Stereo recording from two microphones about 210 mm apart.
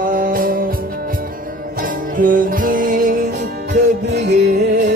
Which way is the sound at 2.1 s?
40° right (ahead or behind).